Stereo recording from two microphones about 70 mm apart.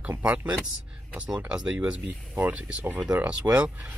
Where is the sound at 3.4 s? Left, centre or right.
Right.